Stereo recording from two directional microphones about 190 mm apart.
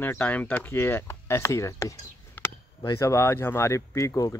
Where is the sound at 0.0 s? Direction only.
10° left (ahead or behind).